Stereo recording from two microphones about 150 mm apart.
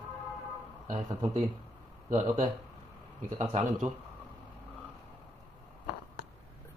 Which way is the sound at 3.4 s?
35° right (ahead or behind).